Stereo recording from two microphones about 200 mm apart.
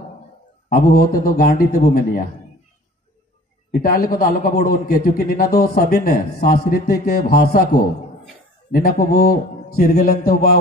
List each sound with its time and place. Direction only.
0.7 s a man's voice: 45° left (ahead or behind)
3.8 s a man's voice: 45° left (ahead or behind)